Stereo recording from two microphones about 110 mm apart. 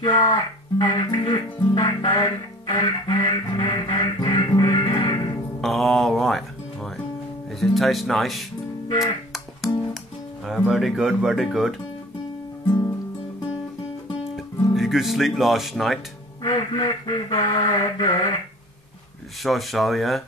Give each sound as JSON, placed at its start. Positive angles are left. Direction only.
{"t": 0.0, "sound": "speech", "side_deg": 40}
{"t": 4.8, "sound": "music", "side_deg": 45}
{"t": 5.6, "sound": "speech", "side_deg": 0}
{"t": 7.6, "sound": "speech", "side_deg": 0}
{"t": 9.0, "sound": "music", "side_deg": 0}
{"t": 10.4, "sound": "speech", "side_deg": 0}
{"t": 14.7, "sound": "speech", "side_deg": 0}
{"t": 16.4, "sound": "speech", "side_deg": 40}
{"t": 19.4, "sound": "speech", "side_deg": 0}